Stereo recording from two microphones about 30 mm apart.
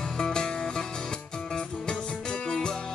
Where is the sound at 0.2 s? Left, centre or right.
Left.